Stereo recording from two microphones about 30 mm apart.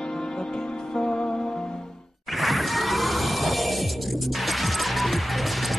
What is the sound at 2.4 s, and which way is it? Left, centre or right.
Music, centre.